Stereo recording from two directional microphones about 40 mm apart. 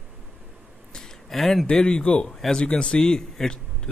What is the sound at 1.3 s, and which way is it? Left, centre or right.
Speech, centre.